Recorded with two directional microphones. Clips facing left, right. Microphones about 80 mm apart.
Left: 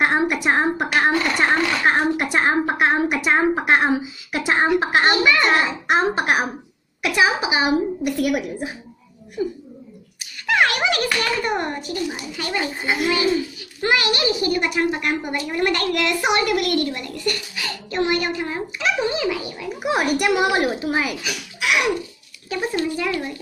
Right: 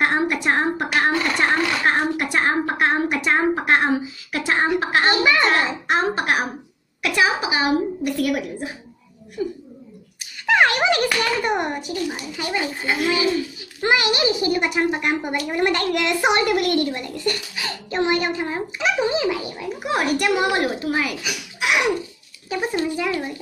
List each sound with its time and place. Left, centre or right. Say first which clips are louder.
0.0 s sewing machine: left 1 dB; centre
2.1 s a woman's voice: left 1 dB; left
5.2 s a child's voice: even; right
5.9 s a woman's voice: left 3 dB; centre
10.4 s a sound: right 2 dB; right
12.4 s a child's voice: even; centre
12.8 s a woman's voice: left 1 dB; centre
13.8 s a child's voice: right 1 dB; right
19.8 s a woman's voice: left 1 dB; centre
21.5 s a sound: even; right
22.5 s a child's voice: even; centre